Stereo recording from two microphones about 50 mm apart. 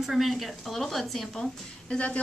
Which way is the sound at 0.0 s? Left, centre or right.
Centre.